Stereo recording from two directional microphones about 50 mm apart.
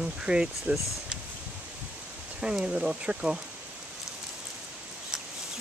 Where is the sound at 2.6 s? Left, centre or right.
Right.